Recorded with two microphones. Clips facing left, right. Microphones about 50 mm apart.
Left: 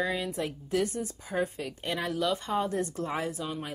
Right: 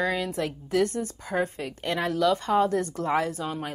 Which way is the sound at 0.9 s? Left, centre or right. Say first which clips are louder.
Right 4 dB; right.